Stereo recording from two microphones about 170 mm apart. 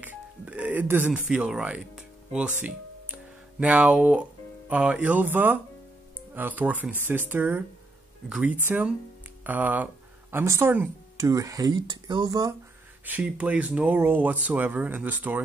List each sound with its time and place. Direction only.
0.0 s music: 10° right (ahead or behind)
6.3 s speech: 10° right (ahead or behind)
13.0 s speech: 10° right (ahead or behind)